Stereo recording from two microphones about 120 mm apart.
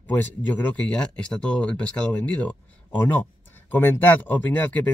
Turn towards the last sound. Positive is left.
turn(degrees=15)  # may be behind; listen again after turning